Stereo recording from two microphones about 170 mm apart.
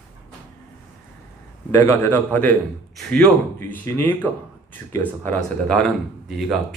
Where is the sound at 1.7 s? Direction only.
15° left (ahead or behind).